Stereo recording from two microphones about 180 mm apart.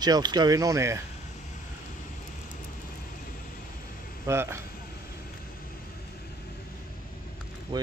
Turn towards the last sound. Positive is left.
turn(degrees=-25)  # may be behind; listen again after turning